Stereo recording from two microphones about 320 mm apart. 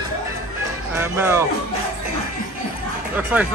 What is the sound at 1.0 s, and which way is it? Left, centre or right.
Speech, centre.